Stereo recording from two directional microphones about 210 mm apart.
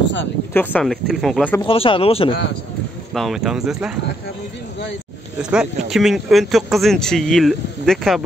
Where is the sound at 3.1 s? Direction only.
Centre (ahead or behind).